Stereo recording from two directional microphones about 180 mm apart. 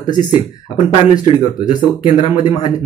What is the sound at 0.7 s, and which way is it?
Speech, 30° left (ahead or behind).